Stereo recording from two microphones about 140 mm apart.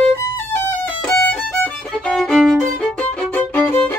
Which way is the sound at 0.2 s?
15° left (ahead or behind).